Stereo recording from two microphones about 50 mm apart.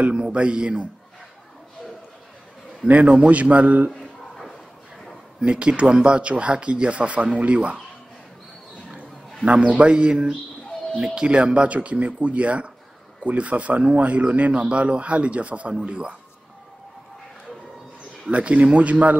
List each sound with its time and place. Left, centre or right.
0.1 s speech: right
2.9 s speech: right
4.0 s a sound: centre
5.4 s speech: right
9.4 s speech: right
18.3 s speech: right